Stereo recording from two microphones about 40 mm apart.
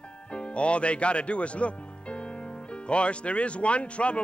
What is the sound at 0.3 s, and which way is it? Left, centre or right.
A man's voice, left.